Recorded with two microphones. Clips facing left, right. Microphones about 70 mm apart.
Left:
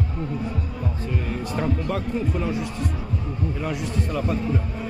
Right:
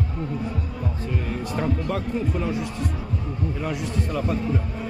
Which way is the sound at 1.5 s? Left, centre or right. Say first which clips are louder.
Even; centre.